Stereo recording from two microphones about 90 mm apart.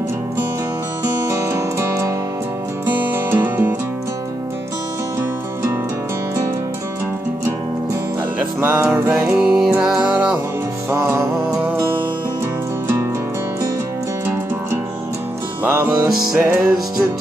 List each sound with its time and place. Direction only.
1.2 s music: 35° right (ahead or behind)
3.3 s music: 20° right (ahead or behind)
8.5 s music: 25° right (ahead or behind)
9.3 s music: 10° right (ahead or behind)
15.6 s music: 25° right (ahead or behind)